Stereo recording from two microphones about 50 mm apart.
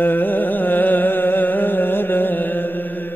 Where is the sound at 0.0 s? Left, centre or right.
Left.